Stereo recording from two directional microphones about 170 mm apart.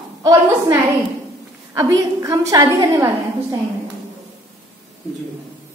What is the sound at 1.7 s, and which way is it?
A woman's voice, 20° right (ahead or behind).